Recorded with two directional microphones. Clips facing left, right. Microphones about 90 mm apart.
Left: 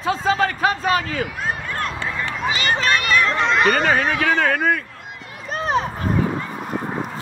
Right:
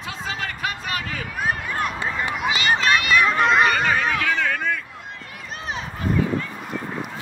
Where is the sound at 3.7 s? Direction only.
45° left (ahead or behind).